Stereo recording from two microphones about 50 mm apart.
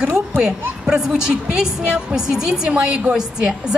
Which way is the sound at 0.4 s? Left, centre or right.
Centre.